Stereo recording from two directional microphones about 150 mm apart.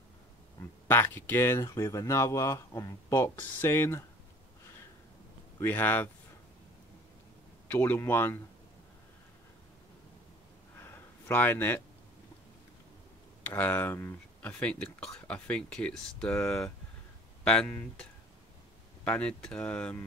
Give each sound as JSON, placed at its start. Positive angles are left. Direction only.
{"t": 0.8, "sound": "speech", "side_deg": 15}
{"t": 5.6, "sound": "speech", "side_deg": 15}
{"t": 7.6, "sound": "speech", "side_deg": 15}
{"t": 10.8, "sound": "a sound", "side_deg": 15}
{"t": 13.5, "sound": "speech", "side_deg": 15}
{"t": 19.0, "sound": "speech", "side_deg": 5}